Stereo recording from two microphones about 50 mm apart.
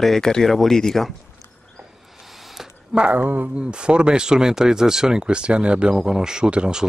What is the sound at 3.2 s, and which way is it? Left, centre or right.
Speech, right.